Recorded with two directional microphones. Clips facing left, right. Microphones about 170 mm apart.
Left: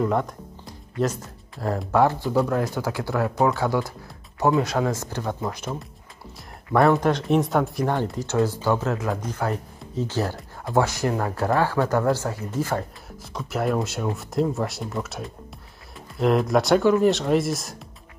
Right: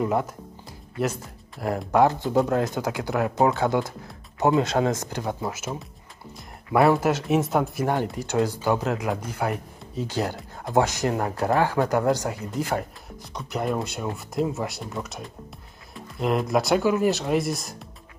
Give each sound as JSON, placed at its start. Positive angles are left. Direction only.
{"t": 0.0, "sound": "speech", "side_deg": -10}
{"t": 5.5, "sound": "speech", "side_deg": -5}
{"t": 7.8, "sound": "speech", "side_deg": -15}
{"t": 13.2, "sound": "speech", "side_deg": 0}